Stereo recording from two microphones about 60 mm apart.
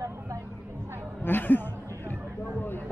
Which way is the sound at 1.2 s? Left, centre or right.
Left.